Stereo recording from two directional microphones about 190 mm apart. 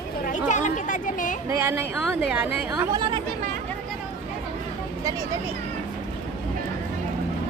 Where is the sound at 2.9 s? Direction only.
25° right (ahead or behind).